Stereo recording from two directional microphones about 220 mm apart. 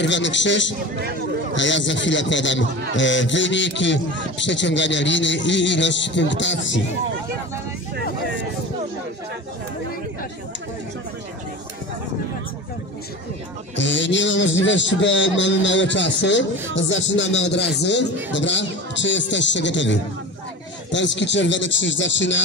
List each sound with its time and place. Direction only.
0.0 s a man's voice: 55° left (ahead or behind)
1.0 s speech: 45° right (ahead or behind)
1.5 s a man's voice: 55° left (ahead or behind)
13.7 s a man's voice: 55° left (ahead or behind)